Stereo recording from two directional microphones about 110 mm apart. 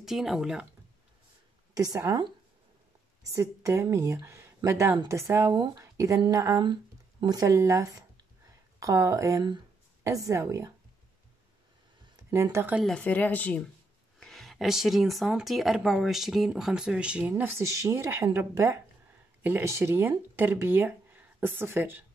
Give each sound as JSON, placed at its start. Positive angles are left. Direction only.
{"t": 0.0, "sound": "speech", "side_deg": -5}
{"t": 1.7, "sound": "speech", "side_deg": -30}
{"t": 3.3, "sound": "a woman's voice", "side_deg": -25}
{"t": 6.6, "sound": "a woman's voice", "side_deg": -45}
{"t": 12.3, "sound": "a woman's voice", "side_deg": -25}
{"t": 12.8, "sound": "speech", "side_deg": 10}
{"t": 14.2, "sound": "speech", "side_deg": 0}